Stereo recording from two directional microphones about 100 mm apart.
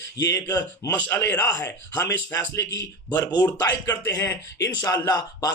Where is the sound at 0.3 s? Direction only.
35° left (ahead or behind).